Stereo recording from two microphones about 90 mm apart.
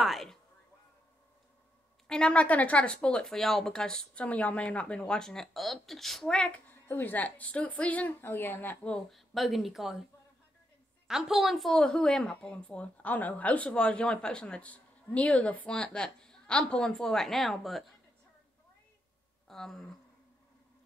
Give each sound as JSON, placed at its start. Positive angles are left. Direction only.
{"t": 0.0, "sound": "speech", "side_deg": 0}
{"t": 2.0, "sound": "speech", "side_deg": 10}
{"t": 6.7, "sound": "a woman's voice", "side_deg": 20}
{"t": 8.9, "sound": "speech", "side_deg": 0}
{"t": 11.1, "sound": "speech", "side_deg": -5}
{"t": 19.4, "sound": "speech", "side_deg": 5}